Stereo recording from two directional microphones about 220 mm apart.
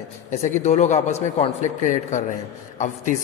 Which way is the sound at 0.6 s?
30° left (ahead or behind).